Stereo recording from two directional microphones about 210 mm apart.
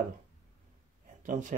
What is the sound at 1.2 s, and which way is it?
Speech, 35° right (ahead or behind).